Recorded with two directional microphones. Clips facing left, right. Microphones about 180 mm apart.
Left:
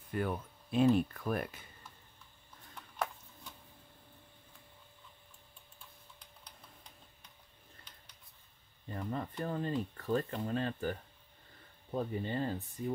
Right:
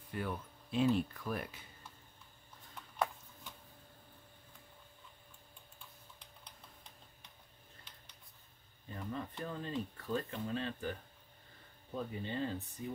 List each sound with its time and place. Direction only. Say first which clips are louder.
0.1 s speech: left 5 dB; 50° left (ahead or behind)
8.9 s speech: left 4 dB; 45° left (ahead or behind)
11.9 s speech: left 4 dB; 45° left (ahead or behind)